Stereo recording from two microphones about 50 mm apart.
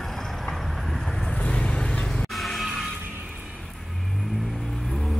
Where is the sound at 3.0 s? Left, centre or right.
Right.